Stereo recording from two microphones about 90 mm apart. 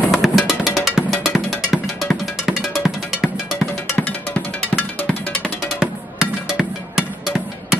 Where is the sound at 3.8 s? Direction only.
15° left (ahead or behind).